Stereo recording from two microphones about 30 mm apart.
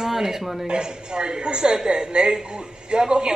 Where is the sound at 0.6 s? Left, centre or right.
Right.